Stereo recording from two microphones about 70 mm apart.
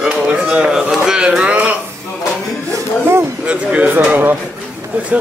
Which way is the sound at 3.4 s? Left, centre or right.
Right.